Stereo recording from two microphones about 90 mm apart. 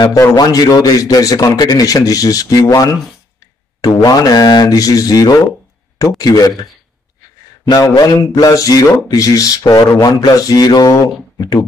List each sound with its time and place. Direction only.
0.4 s speech: 45° left (ahead or behind)
7.7 s speech: 40° left (ahead or behind)